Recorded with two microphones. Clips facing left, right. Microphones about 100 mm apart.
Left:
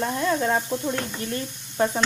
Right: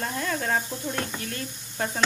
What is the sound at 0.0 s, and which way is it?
Speech, 20° left (ahead or behind).